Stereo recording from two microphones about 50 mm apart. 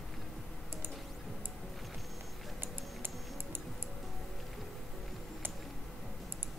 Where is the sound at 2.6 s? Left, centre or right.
Right.